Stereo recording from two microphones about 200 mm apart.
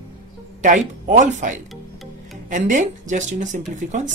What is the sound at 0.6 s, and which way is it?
Speech, 40° right (ahead or behind).